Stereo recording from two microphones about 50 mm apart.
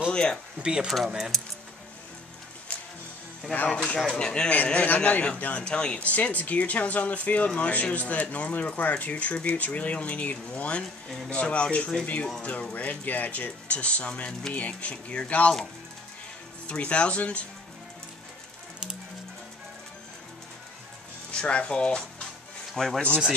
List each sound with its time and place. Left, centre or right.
0.1 s speech: centre
0.6 s speech: centre
0.8 s speech: centre
2.7 s music: left
3.6 s speech: left
4.8 s speech: left
5.2 s speech: left
16.6 s speech: left
21.3 s speech: left
22.8 s speech: centre